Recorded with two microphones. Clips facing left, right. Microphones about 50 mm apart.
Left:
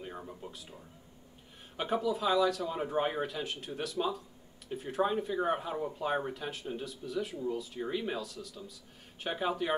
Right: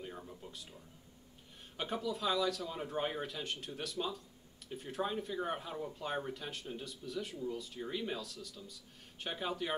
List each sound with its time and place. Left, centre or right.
0.2 s speech: left
0.5 s speech: centre
1.8 s speech: centre